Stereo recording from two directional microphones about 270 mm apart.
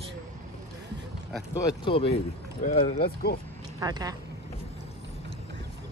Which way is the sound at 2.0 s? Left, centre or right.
Left.